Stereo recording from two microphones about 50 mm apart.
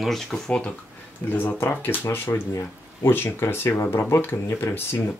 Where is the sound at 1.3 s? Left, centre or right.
Left.